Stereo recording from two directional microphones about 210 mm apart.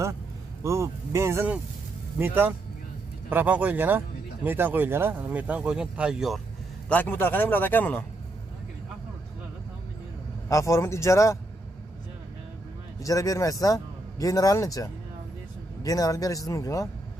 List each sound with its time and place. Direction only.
0.7 s speech: 15° right (ahead or behind)
6.9 s speech: 10° left (ahead or behind)
10.5 s speech: 15° left (ahead or behind)
13.0 s speech: 15° left (ahead or behind)